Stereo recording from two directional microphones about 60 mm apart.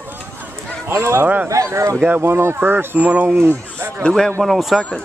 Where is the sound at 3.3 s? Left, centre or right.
Right.